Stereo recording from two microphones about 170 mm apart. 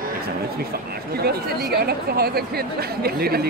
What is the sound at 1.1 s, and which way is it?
Speech, 65° right (ahead or behind).